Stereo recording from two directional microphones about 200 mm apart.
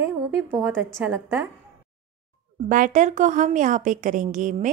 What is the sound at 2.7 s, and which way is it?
A woman's voice, 40° right (ahead or behind).